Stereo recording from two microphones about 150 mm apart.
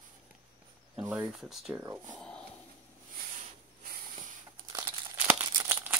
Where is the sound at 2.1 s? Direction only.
5° left (ahead or behind).